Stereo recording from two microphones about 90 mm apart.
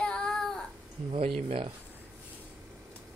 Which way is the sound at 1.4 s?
90° right.